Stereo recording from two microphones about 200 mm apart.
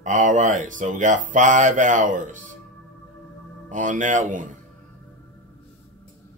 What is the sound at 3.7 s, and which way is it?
Speech, 40° right (ahead or behind).